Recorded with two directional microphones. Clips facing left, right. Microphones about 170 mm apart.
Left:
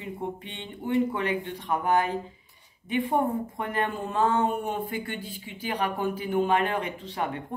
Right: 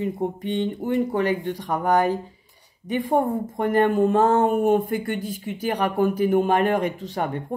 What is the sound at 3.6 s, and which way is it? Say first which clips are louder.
Speech: right 11 dB; 45° right (ahead or behind).